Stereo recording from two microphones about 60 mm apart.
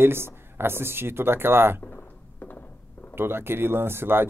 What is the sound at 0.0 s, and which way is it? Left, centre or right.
Speech, right.